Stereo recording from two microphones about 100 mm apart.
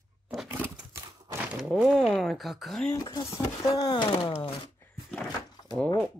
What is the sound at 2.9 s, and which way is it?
Speech, 40° left (ahead or behind).